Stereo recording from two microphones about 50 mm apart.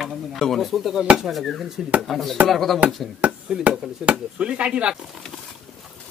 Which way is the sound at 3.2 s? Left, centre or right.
Right.